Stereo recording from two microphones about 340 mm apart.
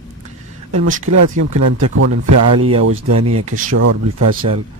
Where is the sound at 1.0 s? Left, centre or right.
Right.